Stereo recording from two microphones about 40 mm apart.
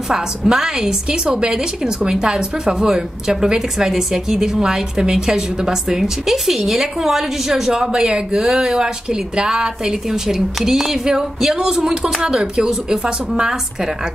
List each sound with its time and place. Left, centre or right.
0.1 s a woman's voice: centre